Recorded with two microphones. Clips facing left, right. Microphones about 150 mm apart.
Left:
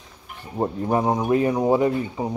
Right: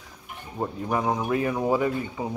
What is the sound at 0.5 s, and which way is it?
Speech, 30° left (ahead or behind).